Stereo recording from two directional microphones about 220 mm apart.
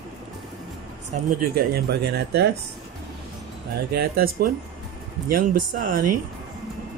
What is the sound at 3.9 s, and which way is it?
A man's voice, 45° right (ahead or behind).